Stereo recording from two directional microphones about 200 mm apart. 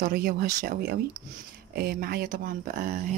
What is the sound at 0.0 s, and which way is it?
Speech, 50° right (ahead or behind).